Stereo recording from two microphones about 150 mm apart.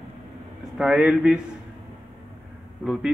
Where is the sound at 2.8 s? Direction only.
5° right (ahead or behind).